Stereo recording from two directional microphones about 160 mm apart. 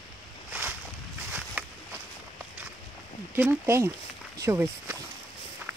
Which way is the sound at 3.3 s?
15° right (ahead or behind).